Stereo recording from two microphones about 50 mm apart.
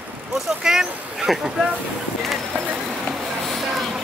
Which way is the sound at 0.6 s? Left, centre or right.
Centre.